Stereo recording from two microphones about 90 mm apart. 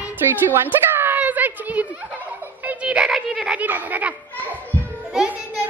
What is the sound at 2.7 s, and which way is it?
Music, 10° right (ahead or behind).